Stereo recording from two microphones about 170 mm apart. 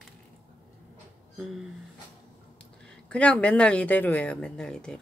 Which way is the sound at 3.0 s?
5° left (ahead or behind).